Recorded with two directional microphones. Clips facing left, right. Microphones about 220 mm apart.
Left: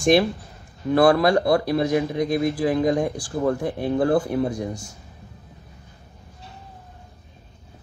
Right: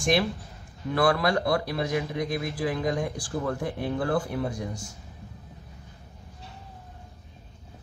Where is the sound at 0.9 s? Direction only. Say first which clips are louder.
Left 7 dB; 30° left (ahead or behind).